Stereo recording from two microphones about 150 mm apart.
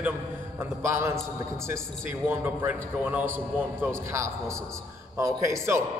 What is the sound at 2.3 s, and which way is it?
A man's voice, 10° right (ahead or behind).